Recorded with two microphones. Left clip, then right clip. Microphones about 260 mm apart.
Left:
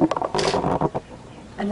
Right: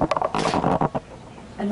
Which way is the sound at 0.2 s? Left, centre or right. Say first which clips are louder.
Right 1 dB; centre.